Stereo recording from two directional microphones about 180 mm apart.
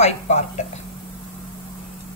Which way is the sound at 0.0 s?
40° left (ahead or behind).